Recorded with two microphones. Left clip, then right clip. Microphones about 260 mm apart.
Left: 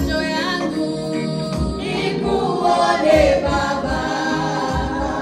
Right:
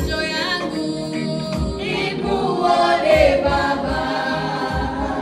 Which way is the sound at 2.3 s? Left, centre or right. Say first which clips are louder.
Even; left.